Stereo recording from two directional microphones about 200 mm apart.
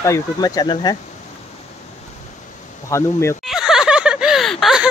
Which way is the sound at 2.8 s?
15° left (ahead or behind).